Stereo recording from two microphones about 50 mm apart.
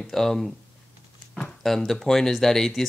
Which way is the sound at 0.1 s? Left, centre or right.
Centre.